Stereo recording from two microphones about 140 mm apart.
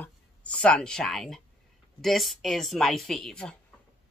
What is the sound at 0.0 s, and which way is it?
Speech, 10° left (ahead or behind).